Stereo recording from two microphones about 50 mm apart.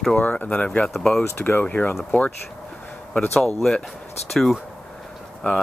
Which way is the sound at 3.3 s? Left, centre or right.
Centre.